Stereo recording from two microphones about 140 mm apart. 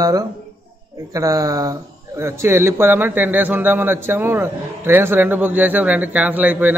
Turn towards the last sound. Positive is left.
turn(degrees=-10)  # may be behind; listen again after turning